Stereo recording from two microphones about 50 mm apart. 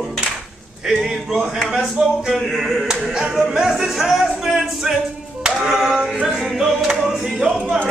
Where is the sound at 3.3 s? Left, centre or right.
Centre.